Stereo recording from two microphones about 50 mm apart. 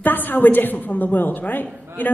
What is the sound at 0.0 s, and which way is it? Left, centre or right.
A woman's voice, left.